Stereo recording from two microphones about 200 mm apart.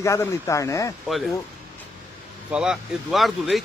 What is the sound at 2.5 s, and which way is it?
Speech, 5° right (ahead or behind).